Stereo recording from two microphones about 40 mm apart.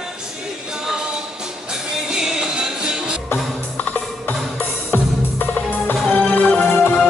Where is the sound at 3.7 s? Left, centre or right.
Left.